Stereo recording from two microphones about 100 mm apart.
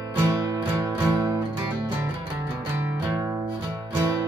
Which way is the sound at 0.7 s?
35° right (ahead or behind).